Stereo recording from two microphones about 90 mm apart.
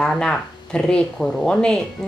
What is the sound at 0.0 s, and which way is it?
Speech, 5° left (ahead or behind).